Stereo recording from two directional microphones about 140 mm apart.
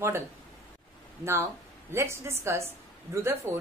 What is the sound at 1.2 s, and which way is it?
A woman's voice, 20° right (ahead or behind).